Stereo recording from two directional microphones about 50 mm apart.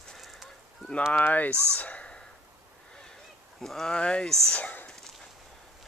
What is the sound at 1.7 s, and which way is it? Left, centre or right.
Sigh, left.